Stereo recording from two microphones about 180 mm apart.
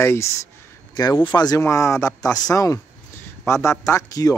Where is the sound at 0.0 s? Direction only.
15° left (ahead or behind).